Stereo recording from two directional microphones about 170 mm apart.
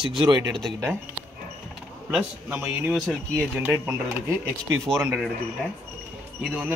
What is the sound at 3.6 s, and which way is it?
Speech, 15° right (ahead or behind).